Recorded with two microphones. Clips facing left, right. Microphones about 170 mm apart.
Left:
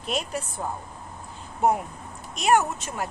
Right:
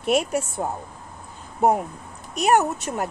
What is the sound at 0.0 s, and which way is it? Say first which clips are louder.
Speech: right 8 dB; 65° right (ahead or behind).